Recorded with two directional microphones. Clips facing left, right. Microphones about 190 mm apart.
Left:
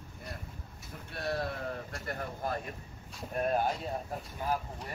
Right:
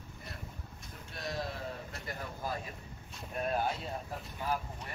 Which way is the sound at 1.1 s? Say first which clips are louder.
Left 4 dB; 60° left (ahead or behind).